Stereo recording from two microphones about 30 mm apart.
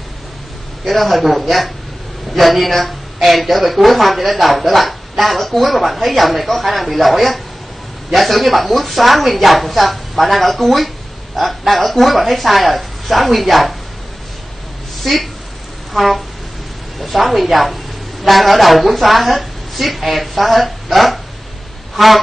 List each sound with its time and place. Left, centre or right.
0.8 s a woman's voice: centre
15.0 s speech: centre
15.9 s a sound: centre
17.0 s a woman's voice: centre
21.9 s duck: centre